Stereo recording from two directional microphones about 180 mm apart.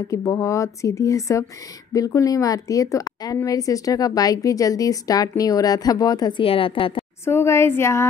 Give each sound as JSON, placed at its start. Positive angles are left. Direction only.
{"t": 0.1, "sound": "a woman's voice", "side_deg": 15}
{"t": 7.2, "sound": "speech", "side_deg": 15}